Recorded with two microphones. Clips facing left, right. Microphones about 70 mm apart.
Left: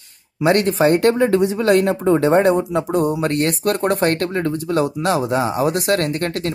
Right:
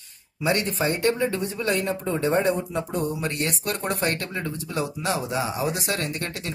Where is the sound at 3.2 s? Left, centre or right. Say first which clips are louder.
Left 9 dB; left.